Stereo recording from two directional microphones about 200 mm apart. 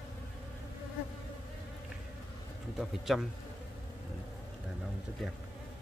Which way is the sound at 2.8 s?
Centre (ahead or behind).